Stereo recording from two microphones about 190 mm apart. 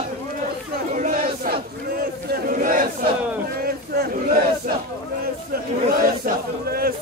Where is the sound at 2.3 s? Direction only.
45° right (ahead or behind).